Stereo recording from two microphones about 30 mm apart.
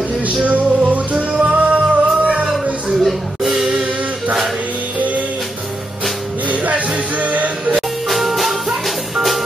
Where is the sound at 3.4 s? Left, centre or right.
Centre.